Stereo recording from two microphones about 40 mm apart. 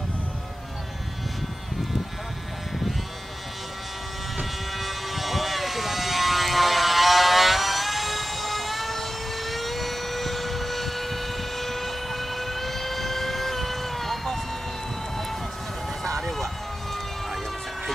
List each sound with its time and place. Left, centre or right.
4.7 s vehicle: centre
16.0 s vehicle: centre